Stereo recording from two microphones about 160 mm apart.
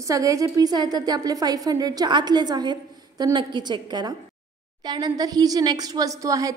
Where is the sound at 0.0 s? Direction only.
20° right (ahead or behind).